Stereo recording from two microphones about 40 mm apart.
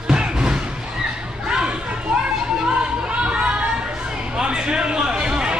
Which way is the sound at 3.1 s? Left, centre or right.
Right.